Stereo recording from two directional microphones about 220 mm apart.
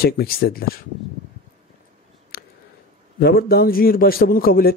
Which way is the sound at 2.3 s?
45° left (ahead or behind).